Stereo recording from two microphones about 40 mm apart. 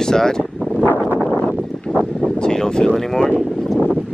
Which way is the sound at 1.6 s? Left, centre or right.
Left.